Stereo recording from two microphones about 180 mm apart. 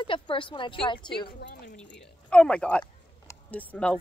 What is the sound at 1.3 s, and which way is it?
Speech, 70° left (ahead or behind).